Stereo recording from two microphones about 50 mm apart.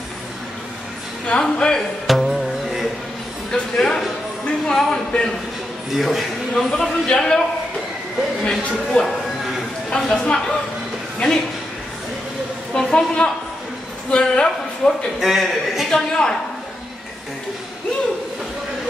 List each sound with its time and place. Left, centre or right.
1.4 s a man's voice: centre
2.0 s music: centre
3.5 s a man's voice: centre
5.9 s a man's voice: centre
6.5 s a man's voice: centre
8.5 s a man's voice: centre
12.9 s a woman's voice: left
15.1 s a man's voice: centre
15.9 s a man's voice: centre